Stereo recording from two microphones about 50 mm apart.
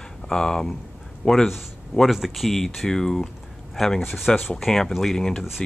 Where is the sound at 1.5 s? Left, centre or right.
Centre.